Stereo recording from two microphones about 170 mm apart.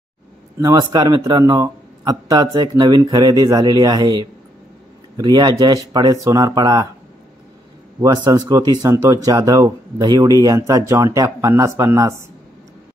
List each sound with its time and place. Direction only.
0.6 s speech: 20° right (ahead or behind)
8.0 s speech: 20° right (ahead or behind)